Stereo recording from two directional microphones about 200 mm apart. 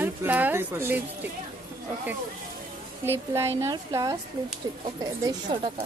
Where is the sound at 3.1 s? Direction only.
15° right (ahead or behind).